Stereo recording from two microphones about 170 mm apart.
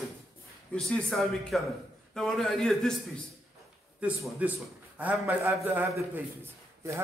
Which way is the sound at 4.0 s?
5° right (ahead or behind).